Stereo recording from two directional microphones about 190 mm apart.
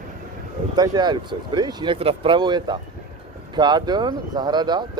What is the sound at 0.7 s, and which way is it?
Speech, 20° right (ahead or behind).